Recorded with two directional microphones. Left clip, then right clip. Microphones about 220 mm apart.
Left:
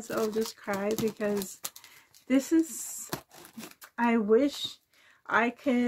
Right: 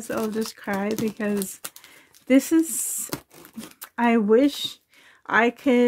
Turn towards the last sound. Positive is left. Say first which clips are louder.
# right 8 dB
turn(degrees=-45)  # may be behind; listen again after turning